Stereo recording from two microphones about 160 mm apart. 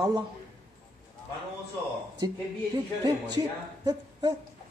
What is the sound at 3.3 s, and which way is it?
A woman's voice, 25° right (ahead or behind).